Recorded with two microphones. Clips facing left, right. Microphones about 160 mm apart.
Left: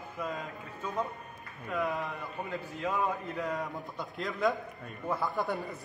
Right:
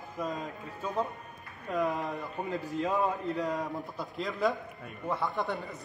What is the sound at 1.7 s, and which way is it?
A man's voice, 40° right (ahead or behind).